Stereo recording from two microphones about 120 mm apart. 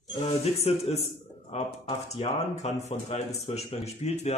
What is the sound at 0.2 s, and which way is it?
Speech, 60° left (ahead or behind).